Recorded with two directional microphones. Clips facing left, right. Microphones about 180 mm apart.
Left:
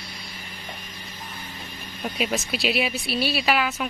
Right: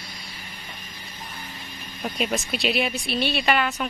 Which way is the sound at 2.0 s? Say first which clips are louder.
Even; centre (ahead or behind).